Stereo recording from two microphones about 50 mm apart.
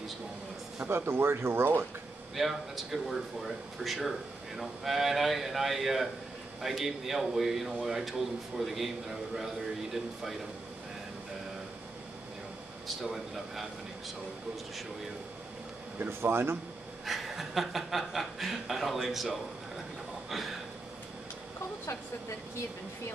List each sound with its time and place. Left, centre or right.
0.8 s speech: right
2.3 s speech: centre
12.8 s speech: centre
16.1 s speech: right
17.0 s speech: centre
20.2 s a sound: centre